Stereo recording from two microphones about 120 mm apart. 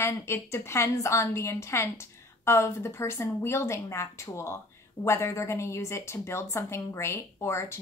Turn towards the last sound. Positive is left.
turn(degrees=20)  # may be behind; listen again after turning